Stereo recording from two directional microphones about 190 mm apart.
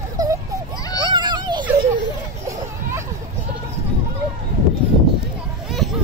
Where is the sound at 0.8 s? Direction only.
20° left (ahead or behind).